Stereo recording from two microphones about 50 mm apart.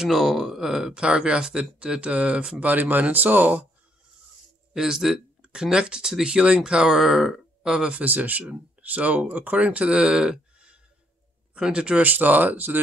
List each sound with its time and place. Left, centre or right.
0.0 s speech: centre
0.9 s speech: centre
2.6 s speech: right
4.7 s speech: centre
7.9 s speech: right
12.0 s speech: right